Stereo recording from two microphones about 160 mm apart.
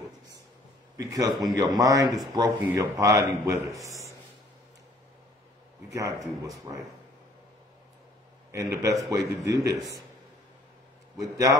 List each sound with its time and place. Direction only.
0.9 s a man's voice: 20° right (ahead or behind)
6.7 s a man's voice: 30° right (ahead or behind)
8.5 s a man's voice: 20° right (ahead or behind)
11.1 s a man's voice: 20° right (ahead or behind)